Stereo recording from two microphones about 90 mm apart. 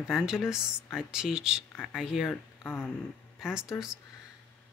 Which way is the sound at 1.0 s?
5° right (ahead or behind).